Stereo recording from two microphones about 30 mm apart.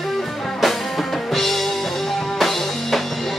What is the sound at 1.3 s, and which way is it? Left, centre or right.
Music, centre.